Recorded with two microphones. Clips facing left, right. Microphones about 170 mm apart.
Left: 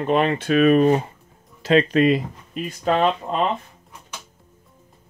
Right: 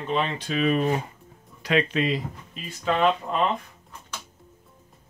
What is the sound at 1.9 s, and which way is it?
Speech, 50° left (ahead or behind).